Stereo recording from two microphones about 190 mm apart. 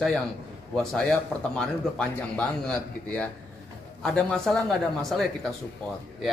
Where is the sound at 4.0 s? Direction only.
5° left (ahead or behind).